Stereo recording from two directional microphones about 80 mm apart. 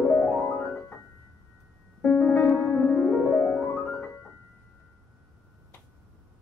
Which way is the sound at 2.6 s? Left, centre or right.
Left.